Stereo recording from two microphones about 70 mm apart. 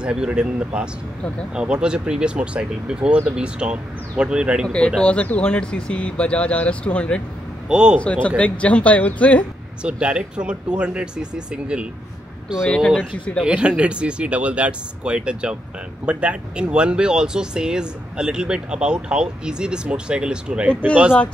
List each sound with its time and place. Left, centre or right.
0.0 s speech: centre
4.6 s speech: centre
7.6 s speech: centre
8.0 s speech: centre
9.8 s speech: centre
12.6 s speech: centre
13.4 s speech: centre